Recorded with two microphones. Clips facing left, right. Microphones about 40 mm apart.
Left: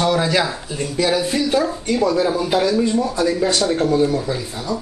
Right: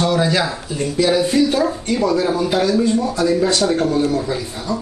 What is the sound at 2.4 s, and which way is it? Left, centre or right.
Speech, centre.